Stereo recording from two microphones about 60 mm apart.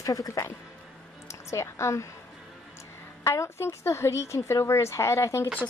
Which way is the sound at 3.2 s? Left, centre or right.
Left.